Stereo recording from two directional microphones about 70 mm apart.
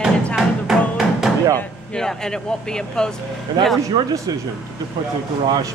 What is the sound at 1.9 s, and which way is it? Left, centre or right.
Speech, centre.